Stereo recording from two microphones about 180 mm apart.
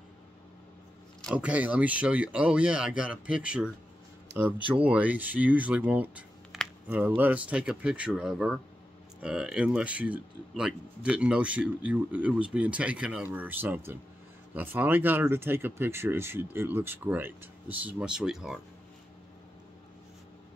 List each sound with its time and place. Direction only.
1.3 s speech: 5° right (ahead or behind)
4.3 s a sound: 70° right (ahead or behind)
4.8 s speech: 10° right (ahead or behind)